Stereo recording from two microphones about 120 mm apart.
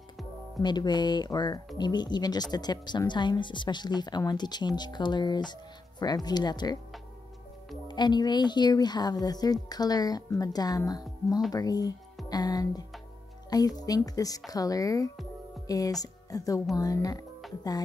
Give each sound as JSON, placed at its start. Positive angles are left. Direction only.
{"t": 0.6, "sound": "speech", "side_deg": 35}
{"t": 7.9, "sound": "speech", "side_deg": 40}